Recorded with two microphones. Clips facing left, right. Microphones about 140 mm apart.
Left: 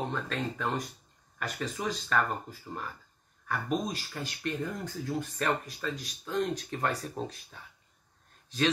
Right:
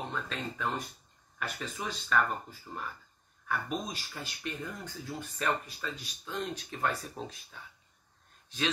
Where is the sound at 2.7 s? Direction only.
20° left (ahead or behind).